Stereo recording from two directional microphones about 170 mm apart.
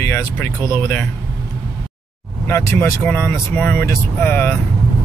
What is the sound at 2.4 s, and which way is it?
Speech, 15° left (ahead or behind).